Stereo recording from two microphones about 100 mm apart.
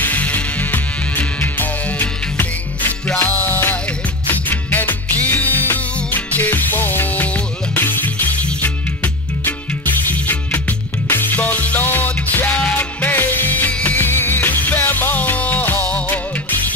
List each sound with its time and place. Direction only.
0.0 s music: 15° left (ahead or behind)